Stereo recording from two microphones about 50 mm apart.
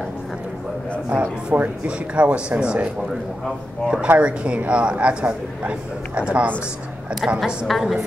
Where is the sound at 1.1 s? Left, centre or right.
Right.